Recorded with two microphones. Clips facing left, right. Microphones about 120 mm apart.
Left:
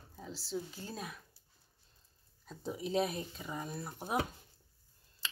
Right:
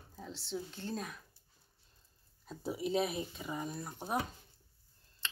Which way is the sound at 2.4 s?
5° right (ahead or behind).